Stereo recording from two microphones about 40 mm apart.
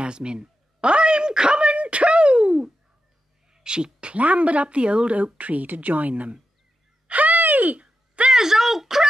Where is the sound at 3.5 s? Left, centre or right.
Centre.